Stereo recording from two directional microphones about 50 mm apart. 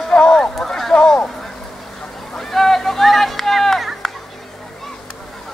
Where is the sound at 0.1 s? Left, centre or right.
Centre.